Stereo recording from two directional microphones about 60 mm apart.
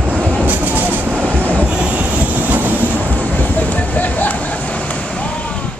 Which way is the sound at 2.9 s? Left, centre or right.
Left.